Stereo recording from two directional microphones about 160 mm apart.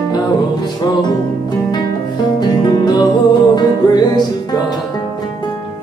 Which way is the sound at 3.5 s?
25° left (ahead or behind).